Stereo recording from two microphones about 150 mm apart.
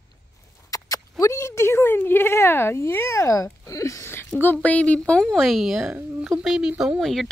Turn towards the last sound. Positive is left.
turn(degrees=0)  # may be behind; listen again after turning